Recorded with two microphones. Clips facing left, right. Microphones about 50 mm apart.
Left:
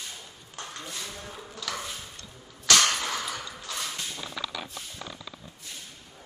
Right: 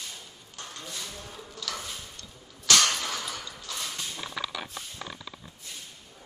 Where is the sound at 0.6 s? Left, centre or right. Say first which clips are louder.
Left 2 dB; centre.